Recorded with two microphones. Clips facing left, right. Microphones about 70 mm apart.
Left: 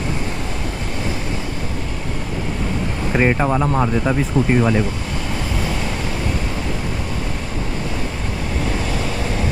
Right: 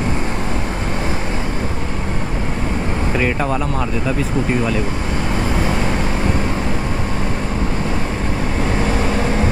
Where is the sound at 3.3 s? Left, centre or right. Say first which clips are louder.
Left 2 dB; centre.